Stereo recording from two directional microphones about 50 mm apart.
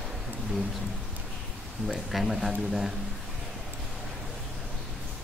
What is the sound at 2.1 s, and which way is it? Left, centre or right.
Speech, centre.